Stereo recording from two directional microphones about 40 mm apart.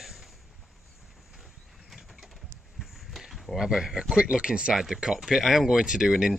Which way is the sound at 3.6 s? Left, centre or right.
Centre.